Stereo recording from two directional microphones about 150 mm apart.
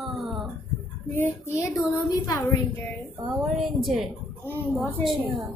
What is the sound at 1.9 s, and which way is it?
Speech, 25° left (ahead or behind).